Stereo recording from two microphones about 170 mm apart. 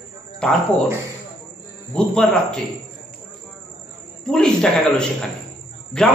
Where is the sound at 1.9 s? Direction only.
5° left (ahead or behind).